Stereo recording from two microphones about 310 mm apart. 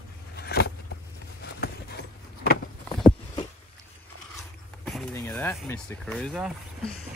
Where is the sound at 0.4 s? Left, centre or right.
Left.